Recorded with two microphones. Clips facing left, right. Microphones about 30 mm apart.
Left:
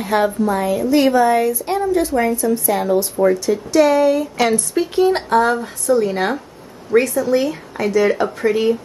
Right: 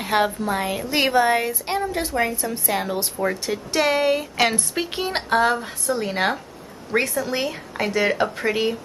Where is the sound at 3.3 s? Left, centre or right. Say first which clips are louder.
Left 8 dB; right.